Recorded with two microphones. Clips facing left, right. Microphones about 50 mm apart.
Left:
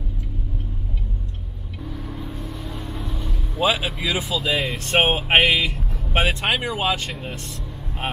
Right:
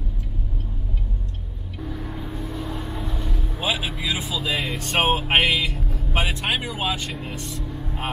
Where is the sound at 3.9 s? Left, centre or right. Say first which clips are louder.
Left 3 dB; centre.